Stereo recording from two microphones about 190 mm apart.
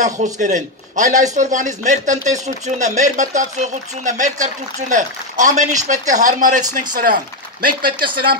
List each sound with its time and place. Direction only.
0.0 s speech: 40° right (ahead or behind)
7.6 s speech: 50° right (ahead or behind)